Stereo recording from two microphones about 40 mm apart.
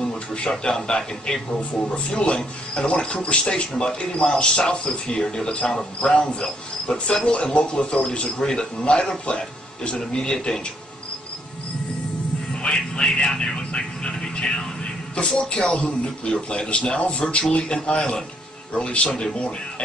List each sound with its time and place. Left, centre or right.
0.0 s a man's voice: centre
12.6 s speech: left